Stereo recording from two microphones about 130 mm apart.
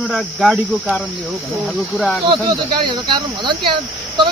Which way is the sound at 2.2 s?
35° right (ahead or behind).